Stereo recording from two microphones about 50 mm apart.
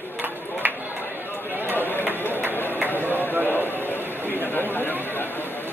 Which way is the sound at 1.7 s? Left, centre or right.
Left.